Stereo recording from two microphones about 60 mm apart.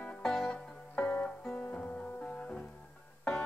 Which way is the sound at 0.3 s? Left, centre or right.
Centre.